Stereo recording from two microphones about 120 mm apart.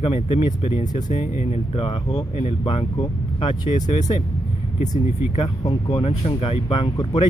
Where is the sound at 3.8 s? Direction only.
85° left.